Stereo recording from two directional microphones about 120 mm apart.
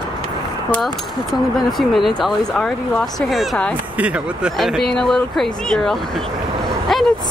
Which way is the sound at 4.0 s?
10° right (ahead or behind).